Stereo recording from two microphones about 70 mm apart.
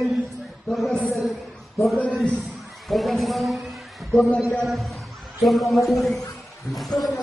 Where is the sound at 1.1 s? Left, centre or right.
Centre.